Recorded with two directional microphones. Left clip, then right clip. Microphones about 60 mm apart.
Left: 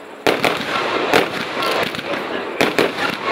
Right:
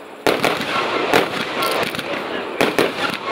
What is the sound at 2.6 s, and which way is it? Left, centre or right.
Fireworks, right.